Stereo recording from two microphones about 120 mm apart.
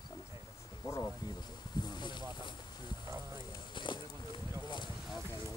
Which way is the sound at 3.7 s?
45° left (ahead or behind).